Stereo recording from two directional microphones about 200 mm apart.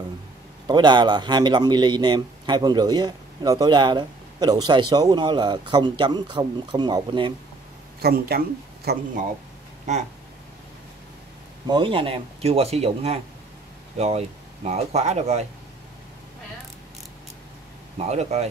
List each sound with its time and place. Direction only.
0.7 s speech: 20° right (ahead or behind)
8.0 s speech: 50° right (ahead or behind)
11.6 s speech: 25° right (ahead or behind)
17.9 s speech: 35° right (ahead or behind)